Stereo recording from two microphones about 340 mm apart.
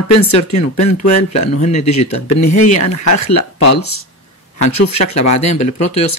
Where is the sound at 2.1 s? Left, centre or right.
Left.